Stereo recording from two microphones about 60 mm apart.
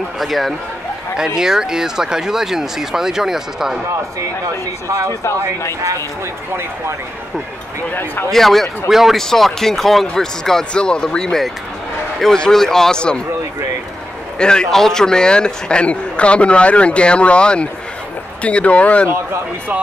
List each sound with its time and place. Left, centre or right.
0.2 s speech: centre
1.1 s speech: centre
4.8 s speech: right
7.9 s speech: left
8.3 s speech: centre
9.2 s a man's voice: centre
14.4 s a man's voice: centre
19.0 s speech: right